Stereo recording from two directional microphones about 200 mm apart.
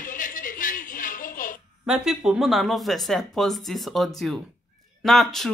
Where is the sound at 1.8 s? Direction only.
Centre (ahead or behind).